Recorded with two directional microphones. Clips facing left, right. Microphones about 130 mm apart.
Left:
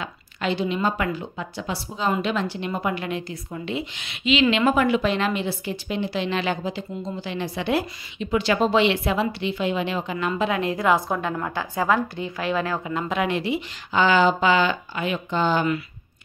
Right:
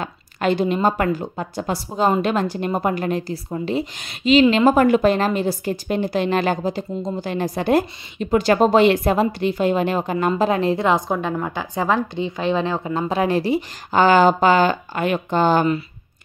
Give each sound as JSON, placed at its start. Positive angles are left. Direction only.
{"t": 0.0, "sound": "a woman's voice", "side_deg": -50}